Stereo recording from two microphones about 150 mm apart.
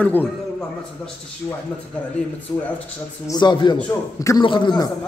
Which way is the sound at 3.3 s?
30° left (ahead or behind).